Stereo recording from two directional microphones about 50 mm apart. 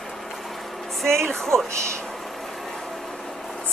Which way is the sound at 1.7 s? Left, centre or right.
Right.